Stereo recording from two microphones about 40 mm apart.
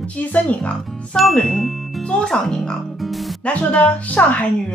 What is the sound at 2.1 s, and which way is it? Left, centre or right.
Speech, centre.